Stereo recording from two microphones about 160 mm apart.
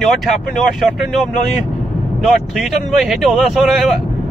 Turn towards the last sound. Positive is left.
turn(degrees=0)  # may be behind; listen again after turning